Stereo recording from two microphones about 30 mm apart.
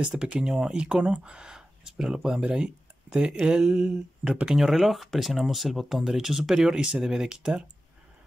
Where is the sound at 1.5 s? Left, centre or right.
Right.